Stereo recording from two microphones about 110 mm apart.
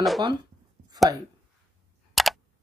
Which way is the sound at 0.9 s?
35° right (ahead or behind).